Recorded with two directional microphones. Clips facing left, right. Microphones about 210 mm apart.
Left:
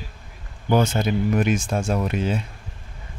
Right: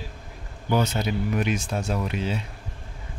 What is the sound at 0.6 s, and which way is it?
Speech, 50° left (ahead or behind).